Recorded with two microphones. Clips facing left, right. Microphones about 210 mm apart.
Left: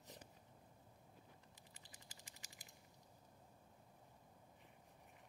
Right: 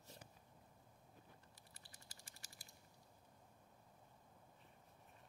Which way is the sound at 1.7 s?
20° left (ahead or behind).